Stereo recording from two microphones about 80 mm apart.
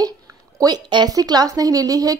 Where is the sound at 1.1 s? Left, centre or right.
Right.